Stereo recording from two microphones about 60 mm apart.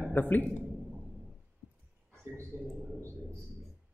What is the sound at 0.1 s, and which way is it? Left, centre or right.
Speech, left.